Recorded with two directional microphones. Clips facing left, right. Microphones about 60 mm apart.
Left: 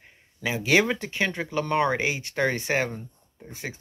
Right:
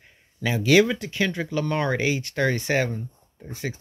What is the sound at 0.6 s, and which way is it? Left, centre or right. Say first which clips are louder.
Speech: right 4 dB; left.